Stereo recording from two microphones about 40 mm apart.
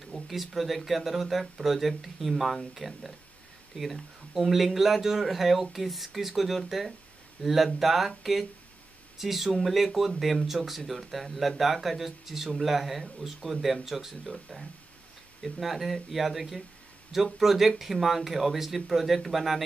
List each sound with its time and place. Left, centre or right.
0.3 s speech: centre
2.8 s speech: left
3.8 s speech: centre
14.5 s speech: centre
15.6 s speech: centre